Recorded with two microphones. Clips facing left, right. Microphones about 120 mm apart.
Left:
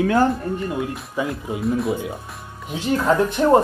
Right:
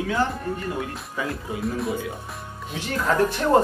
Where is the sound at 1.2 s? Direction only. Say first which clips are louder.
Left 4 dB; 20° left (ahead or behind).